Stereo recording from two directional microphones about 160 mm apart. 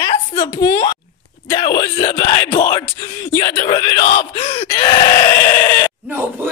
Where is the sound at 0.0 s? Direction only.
30° left (ahead or behind).